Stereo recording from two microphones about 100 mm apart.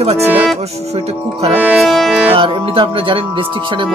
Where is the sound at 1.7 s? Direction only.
Centre (ahead or behind).